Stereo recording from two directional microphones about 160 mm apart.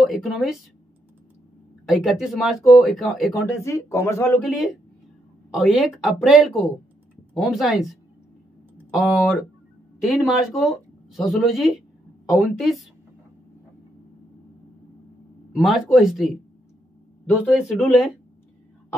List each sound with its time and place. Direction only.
0.0 s speech: centre (ahead or behind)
1.9 s speech: centre (ahead or behind)
3.3 s speech: 15° left (ahead or behind)
4.5 s speech: centre (ahead or behind)
10.0 s speech: centre (ahead or behind)
15.5 s speech: centre (ahead or behind)
17.5 s speech: centre (ahead or behind)